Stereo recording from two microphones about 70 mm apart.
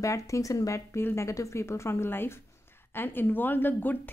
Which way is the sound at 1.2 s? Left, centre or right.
Left.